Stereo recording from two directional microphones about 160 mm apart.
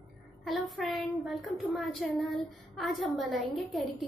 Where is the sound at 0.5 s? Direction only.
Centre (ahead or behind).